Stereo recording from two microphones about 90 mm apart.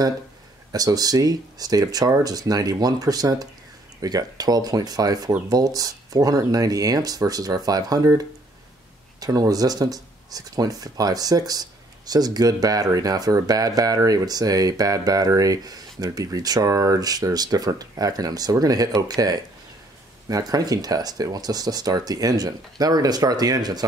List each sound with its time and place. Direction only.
0.7 s speech: 45° right (ahead or behind)
9.2 s speech: 45° right (ahead or behind)